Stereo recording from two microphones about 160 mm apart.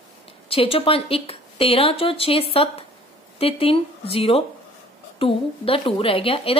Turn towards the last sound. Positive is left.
turn(degrees=35)  # may be behind; listen again after turning